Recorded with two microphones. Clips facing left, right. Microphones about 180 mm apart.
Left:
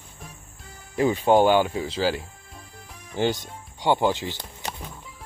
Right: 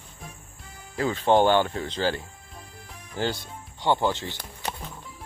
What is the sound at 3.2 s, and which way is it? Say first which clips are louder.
Speech: left 4 dB; 15° left (ahead or behind).